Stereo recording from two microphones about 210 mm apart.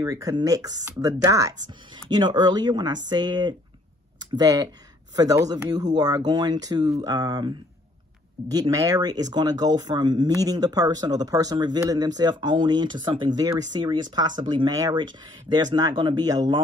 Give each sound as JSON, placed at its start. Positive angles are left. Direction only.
{"t": 0.0, "sound": "speech", "side_deg": -15}